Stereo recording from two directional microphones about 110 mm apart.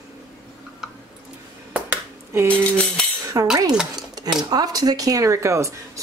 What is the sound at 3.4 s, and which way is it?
A woman's voice, 30° right (ahead or behind).